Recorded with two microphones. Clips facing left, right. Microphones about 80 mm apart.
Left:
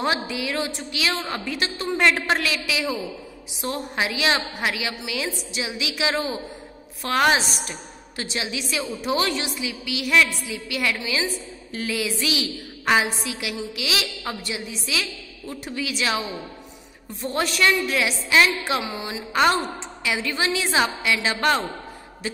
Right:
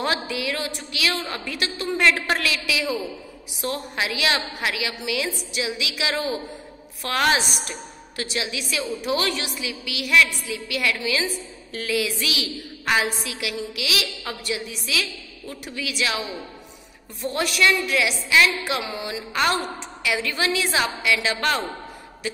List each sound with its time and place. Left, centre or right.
0.0 s a woman's voice: left